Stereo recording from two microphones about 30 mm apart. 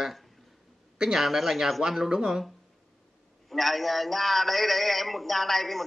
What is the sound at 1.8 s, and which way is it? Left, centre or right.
Speech, centre.